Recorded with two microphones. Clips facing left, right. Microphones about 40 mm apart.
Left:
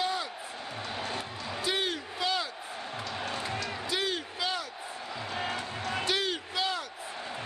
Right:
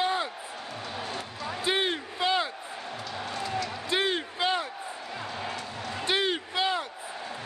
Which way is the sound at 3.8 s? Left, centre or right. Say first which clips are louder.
Right 5 dB; right.